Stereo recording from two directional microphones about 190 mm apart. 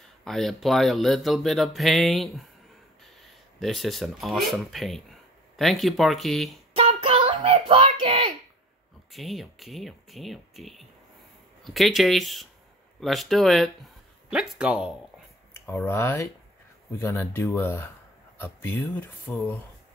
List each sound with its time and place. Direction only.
0.2 s speech: centre (ahead or behind)
6.7 s a sound: 30° right (ahead or behind)
9.1 s speech: centre (ahead or behind)
15.5 s speech: 15° left (ahead or behind)